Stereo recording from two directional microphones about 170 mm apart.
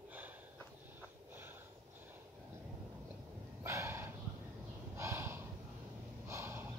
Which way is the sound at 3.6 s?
15° right (ahead or behind).